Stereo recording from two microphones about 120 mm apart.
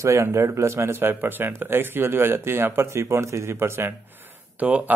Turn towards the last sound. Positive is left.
turn(degrees=-15)  # may be behind; listen again after turning